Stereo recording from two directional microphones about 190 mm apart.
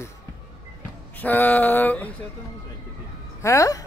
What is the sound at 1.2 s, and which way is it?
Speech, 10° left (ahead or behind).